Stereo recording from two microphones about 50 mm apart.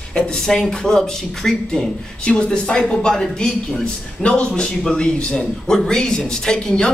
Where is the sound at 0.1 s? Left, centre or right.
Centre.